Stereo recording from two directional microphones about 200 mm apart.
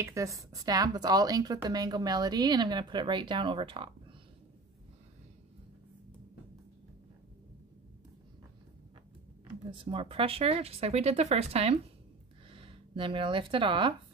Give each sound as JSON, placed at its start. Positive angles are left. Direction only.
{"t": 0.0, "sound": "a woman's voice", "side_deg": -15}
{"t": 9.7, "sound": "a woman's voice", "side_deg": -25}